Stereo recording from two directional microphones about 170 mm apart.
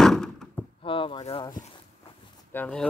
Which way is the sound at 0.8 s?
30° left (ahead or behind).